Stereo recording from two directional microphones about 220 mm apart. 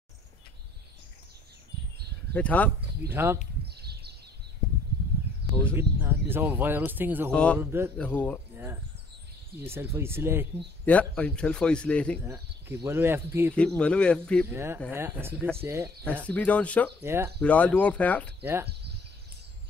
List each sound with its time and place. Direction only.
2.3 s speech: 5° left (ahead or behind)
3.1 s speech: 10° right (ahead or behind)
3.6 s a sound: 45° right (ahead or behind)
5.6 s speech: 10° right (ahead or behind)
8.0 s speech: 5° left (ahead or behind)
9.6 s speech: 10° right (ahead or behind)
10.9 s a man's voice: 5° left (ahead or behind)
12.3 s speech: 10° right (ahead or behind)
13.6 s a man's voice: 5° left (ahead or behind)
14.5 s speech: 10° right (ahead or behind)
16.3 s speech: 5° left (ahead or behind)
17.0 s speech: 10° right (ahead or behind)
17.4 s speech: 5° left (ahead or behind)
18.4 s speech: 10° right (ahead or behind)